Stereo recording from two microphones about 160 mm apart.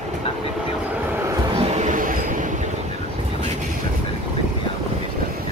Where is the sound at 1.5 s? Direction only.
40° right (ahead or behind).